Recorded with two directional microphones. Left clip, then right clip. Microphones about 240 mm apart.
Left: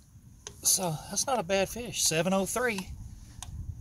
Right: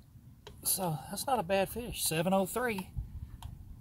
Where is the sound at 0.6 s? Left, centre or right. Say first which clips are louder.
Left 6 dB; centre.